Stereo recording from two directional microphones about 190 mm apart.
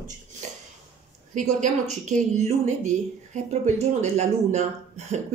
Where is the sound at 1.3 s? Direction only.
40° right (ahead or behind).